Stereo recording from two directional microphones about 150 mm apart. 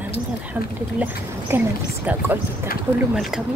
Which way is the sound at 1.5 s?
15° right (ahead or behind).